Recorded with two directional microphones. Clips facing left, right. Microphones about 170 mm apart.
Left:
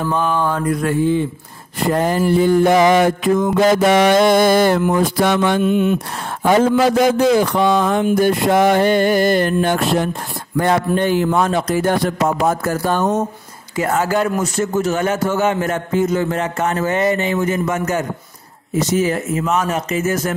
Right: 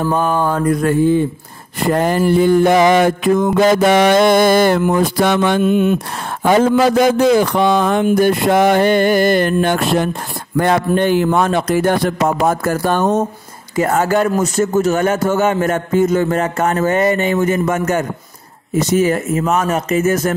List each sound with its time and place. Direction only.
0.0 s a man's voice: 45° right (ahead or behind)
1.9 s music: 65° right (ahead or behind)
5.6 s a man's voice: 50° right (ahead or behind)
7.2 s music: 70° right (ahead or behind)
10.6 s a man's voice: 70° right (ahead or behind)
13.7 s a man's voice: 45° right (ahead or behind)